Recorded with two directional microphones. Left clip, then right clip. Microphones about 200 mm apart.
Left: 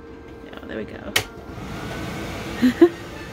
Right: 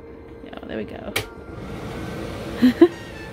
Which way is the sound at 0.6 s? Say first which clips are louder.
Right 1 dB; 15° right (ahead or behind).